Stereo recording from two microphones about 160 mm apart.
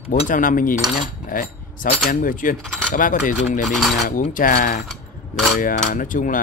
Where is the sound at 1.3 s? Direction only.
60° left (ahead or behind).